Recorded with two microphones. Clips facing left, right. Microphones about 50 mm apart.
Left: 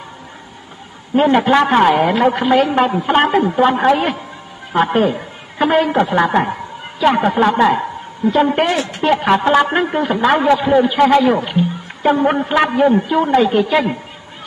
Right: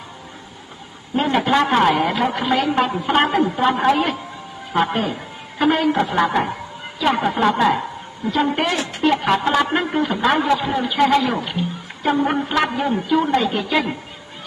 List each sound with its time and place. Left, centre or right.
1.1 s a man's voice: centre